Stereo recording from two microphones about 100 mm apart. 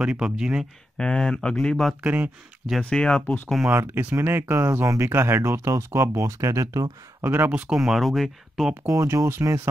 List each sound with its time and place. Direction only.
0.0 s speech: 10° right (ahead or behind)
0.9 s speech: 10° left (ahead or behind)
2.0 s speech: 15° right (ahead or behind)
2.8 s speech: 10° left (ahead or behind)
3.7 s speech: 20° right (ahead or behind)
7.2 s speech: 25° right (ahead or behind)
7.6 s speech: 5° right (ahead or behind)
8.8 s speech: 30° right (ahead or behind)